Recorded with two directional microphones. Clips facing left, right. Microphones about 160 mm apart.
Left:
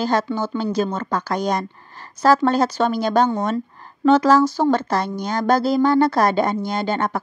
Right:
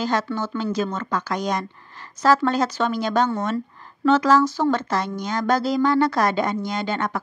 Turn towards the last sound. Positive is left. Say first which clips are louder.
# left 3 dB
turn(degrees=35)  # may be behind; listen again after turning